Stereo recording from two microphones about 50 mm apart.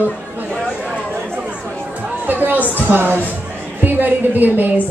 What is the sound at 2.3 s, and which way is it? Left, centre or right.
A man's voice, right.